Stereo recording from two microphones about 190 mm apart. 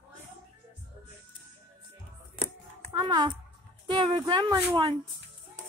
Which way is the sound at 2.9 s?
20° right (ahead or behind).